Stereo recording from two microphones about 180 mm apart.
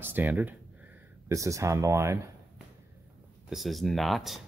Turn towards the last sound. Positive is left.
turn(degrees=0)  # may be behind; listen again after turning